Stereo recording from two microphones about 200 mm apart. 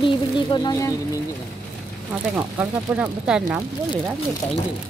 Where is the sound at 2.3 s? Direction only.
5° right (ahead or behind).